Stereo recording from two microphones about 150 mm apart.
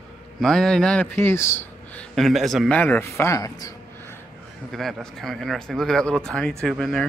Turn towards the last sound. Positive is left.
turn(degrees=0)  # may be behind; listen again after turning